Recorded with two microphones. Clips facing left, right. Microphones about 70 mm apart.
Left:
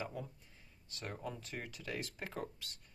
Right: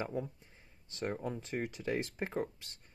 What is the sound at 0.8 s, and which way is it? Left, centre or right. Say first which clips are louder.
Speech: right 7 dB; right.